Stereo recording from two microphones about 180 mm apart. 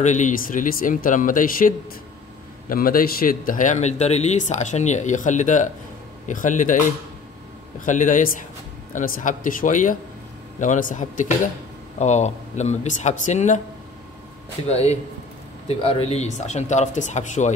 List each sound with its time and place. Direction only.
0.0 s speech: 45° left (ahead or behind)
2.7 s speech: 55° left (ahead or behind)
14.7 s speech: 35° left (ahead or behind)